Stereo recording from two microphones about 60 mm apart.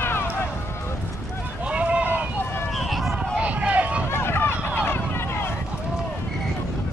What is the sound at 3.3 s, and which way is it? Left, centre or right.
Run, right.